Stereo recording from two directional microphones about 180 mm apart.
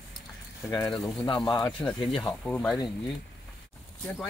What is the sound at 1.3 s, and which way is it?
Speech, 25° left (ahead or behind).